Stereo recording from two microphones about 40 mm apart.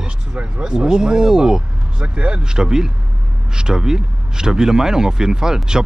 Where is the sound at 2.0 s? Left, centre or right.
Right.